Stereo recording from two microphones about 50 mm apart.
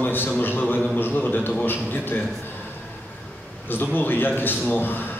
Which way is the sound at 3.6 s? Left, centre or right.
Left.